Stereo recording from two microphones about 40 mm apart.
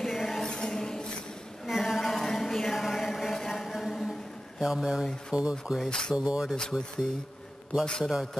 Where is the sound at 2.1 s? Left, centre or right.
Centre.